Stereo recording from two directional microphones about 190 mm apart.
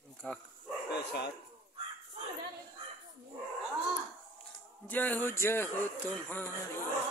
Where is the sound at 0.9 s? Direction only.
60° left (ahead or behind).